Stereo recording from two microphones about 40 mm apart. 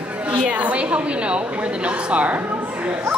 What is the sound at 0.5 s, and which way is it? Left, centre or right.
A woman's voice, right.